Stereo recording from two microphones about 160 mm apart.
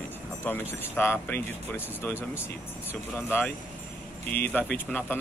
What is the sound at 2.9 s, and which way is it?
Speech, 15° left (ahead or behind).